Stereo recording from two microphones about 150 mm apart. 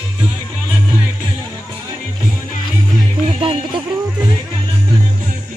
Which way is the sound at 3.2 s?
35° right (ahead or behind).